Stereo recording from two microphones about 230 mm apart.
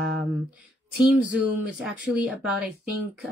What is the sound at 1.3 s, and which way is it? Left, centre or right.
Speech, centre.